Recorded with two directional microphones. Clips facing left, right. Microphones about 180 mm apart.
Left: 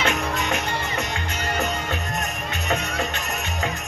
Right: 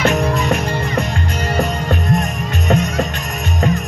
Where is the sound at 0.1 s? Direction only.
35° right (ahead or behind).